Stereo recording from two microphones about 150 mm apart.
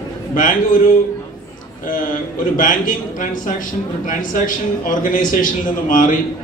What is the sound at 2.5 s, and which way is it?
A man's voice, 65° left (ahead or behind).